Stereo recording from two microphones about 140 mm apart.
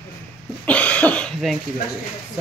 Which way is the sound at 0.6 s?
10° left (ahead or behind).